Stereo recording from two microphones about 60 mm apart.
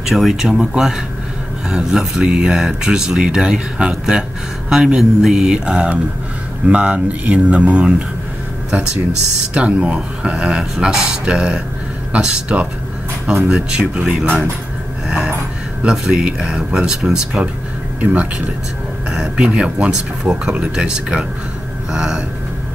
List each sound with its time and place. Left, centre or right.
0.1 s speech: centre
9.5 s speech: centre
18.1 s speech: right; by 22.2 s centre